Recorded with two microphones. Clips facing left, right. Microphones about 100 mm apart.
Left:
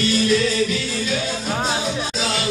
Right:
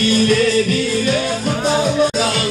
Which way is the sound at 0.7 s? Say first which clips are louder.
Right 7 dB; 55° right (ahead or behind).